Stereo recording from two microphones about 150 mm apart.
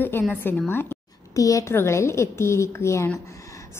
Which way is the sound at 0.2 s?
10° left (ahead or behind).